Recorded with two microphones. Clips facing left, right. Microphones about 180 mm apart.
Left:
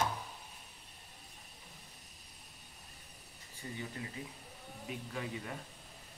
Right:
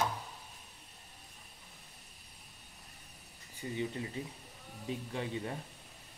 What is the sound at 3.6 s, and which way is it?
Speech, 20° right (ahead or behind).